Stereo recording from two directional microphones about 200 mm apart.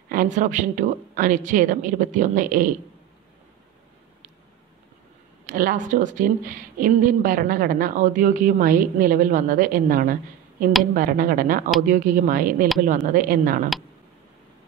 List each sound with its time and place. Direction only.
0.1 s a woman's voice: 40° right (ahead or behind)
5.5 s speech: 40° right (ahead or behind)